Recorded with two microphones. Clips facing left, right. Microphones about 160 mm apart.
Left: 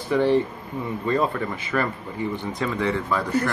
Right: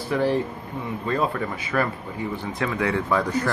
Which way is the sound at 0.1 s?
5° right (ahead or behind).